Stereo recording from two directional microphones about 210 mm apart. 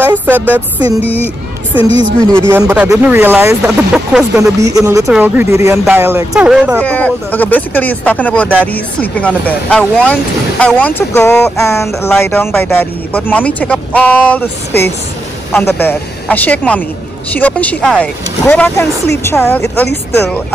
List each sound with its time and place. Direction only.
0.3 s speech: 10° right (ahead or behind)
1.0 s speech: 10° left (ahead or behind)
1.8 s a woman's voice: 25° left (ahead or behind)
2.5 s speech: 10° right (ahead or behind)
6.8 s speech: 5° left (ahead or behind)